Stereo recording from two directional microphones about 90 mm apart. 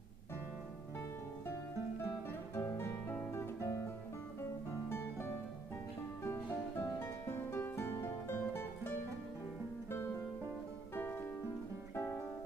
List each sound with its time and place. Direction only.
2.5 s music: 25° left (ahead or behind)
4.8 s music: 30° left (ahead or behind)
7.0 s music: 25° left (ahead or behind)
11.9 s music: 30° left (ahead or behind)